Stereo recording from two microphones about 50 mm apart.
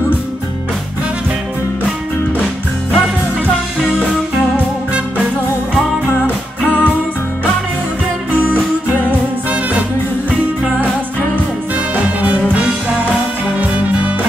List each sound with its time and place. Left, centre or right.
6.2 s music: left
8.3 s music: right
11.9 s music: right